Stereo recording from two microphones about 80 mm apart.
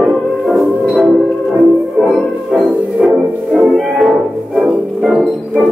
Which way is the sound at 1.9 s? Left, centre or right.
Centre.